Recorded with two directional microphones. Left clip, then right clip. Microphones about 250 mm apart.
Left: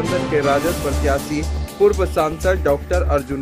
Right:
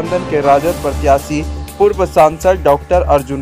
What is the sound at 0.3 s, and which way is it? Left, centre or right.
Speech, centre.